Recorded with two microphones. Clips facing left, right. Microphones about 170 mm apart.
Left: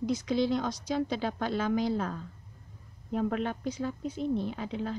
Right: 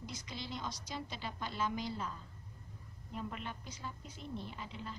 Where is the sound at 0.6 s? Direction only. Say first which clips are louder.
Left 13 dB; 90° left.